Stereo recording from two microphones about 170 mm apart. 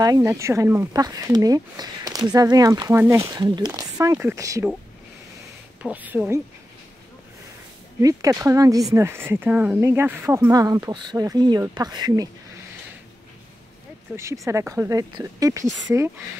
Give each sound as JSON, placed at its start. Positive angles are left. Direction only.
{"t": 0.0, "sound": "speech", "side_deg": -20}
{"t": 5.8, "sound": "speech", "side_deg": -10}
{"t": 8.0, "sound": "speech", "side_deg": -20}
{"t": 14.1, "sound": "speech", "side_deg": -15}